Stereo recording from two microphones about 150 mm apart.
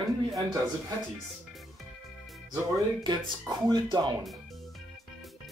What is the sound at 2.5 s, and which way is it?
Speech, 25° right (ahead or behind).